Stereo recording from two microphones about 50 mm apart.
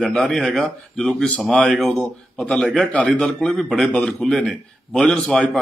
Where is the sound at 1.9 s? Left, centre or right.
Left.